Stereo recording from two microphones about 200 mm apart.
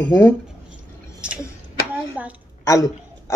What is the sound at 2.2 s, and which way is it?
Speech, 10° right (ahead or behind).